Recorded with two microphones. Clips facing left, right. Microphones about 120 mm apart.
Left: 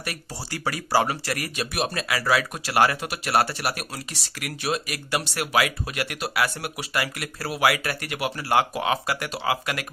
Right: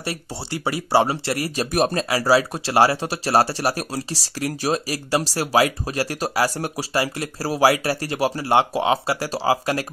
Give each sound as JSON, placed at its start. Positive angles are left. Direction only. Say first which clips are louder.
{"t": 0.0, "sound": "speech", "louder": "right 5 dB", "side_deg": -25}
{"t": 1.7, "sound": "speech", "louder": "right 7 dB", "side_deg": -40}